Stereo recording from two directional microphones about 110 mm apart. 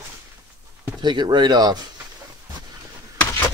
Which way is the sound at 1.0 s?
40° right (ahead or behind).